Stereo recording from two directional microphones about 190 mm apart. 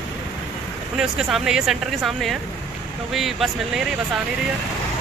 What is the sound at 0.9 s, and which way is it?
Speech, 5° right (ahead or behind).